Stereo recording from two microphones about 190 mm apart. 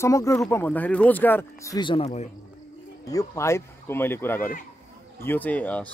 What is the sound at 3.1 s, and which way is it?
Speech, 15° left (ahead or behind).